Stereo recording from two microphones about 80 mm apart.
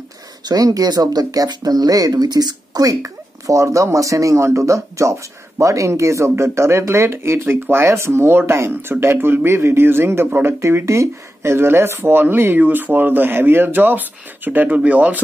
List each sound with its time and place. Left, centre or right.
0.5 s speech: right; by 15.1 s centre